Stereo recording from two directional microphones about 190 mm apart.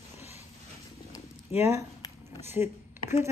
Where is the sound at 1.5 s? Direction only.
10° right (ahead or behind).